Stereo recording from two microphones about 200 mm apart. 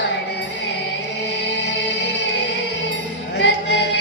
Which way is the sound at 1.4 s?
65° left (ahead or behind).